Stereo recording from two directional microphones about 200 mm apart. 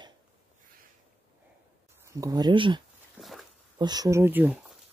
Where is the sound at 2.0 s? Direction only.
20° right (ahead or behind).